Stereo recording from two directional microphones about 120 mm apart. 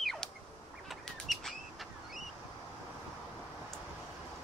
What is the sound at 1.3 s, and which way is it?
Bird flight, centre (ahead or behind).